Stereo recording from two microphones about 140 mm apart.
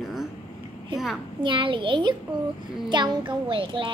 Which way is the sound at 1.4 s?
35° right (ahead or behind).